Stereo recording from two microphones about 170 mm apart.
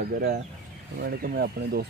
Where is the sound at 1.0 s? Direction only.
65° right (ahead or behind).